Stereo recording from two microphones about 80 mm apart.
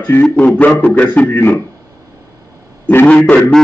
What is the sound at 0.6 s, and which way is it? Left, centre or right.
Speech, left.